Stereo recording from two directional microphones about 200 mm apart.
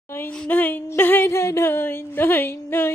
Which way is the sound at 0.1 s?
5° left (ahead or behind).